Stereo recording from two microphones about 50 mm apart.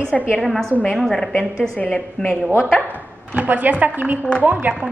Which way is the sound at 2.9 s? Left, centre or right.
Right.